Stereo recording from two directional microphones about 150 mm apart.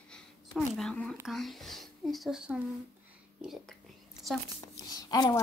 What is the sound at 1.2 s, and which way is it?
Speech, centre (ahead or behind).